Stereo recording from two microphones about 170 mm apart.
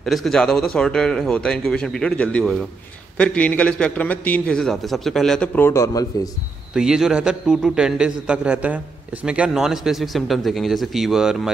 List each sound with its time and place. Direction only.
0.0 s a man's voice: centre (ahead or behind)
5.7 s a man's voice: 20° left (ahead or behind)
6.7 s a man's voice: 5° right (ahead or behind)